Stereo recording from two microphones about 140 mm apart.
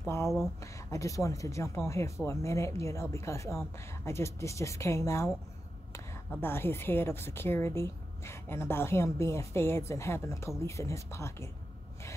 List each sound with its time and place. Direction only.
0.0 s speech: 20° left (ahead or behind)
6.4 s a woman's voice: 15° left (ahead or behind)